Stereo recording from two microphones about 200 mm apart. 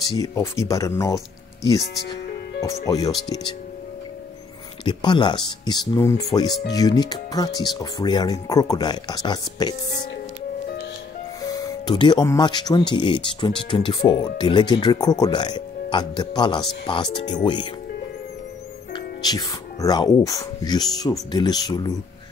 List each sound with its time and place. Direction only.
0.1 s speech: 15° left (ahead or behind)
2.6 s speech: 15° left (ahead or behind)
4.8 s speech: 25° left (ahead or behind)
11.4 s speech: 20° left (ahead or behind)
18.9 s speech: 20° left (ahead or behind)